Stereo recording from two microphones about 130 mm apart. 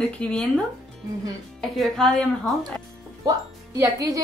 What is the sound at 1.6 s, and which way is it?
Speech, 5° left (ahead or behind).